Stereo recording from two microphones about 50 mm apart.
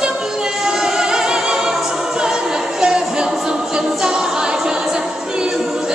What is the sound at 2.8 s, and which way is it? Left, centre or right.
A capella, centre.